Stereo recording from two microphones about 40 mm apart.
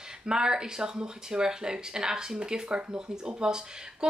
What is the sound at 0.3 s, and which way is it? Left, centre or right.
Speech, centre.